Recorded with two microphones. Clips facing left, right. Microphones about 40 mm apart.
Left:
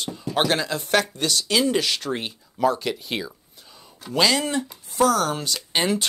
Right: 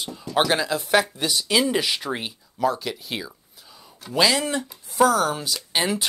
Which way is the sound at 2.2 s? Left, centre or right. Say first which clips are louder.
Left 2 dB; centre.